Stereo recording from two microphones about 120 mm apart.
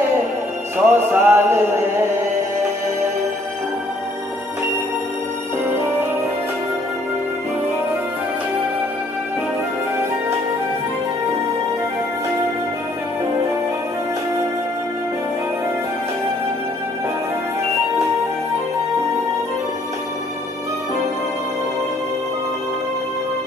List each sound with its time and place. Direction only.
0.7 s music: 20° right (ahead or behind)